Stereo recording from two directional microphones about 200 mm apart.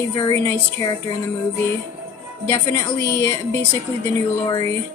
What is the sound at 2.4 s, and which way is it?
Speech, 15° left (ahead or behind).